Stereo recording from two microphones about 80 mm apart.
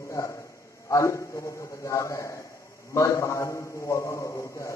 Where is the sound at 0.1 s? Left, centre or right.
Left.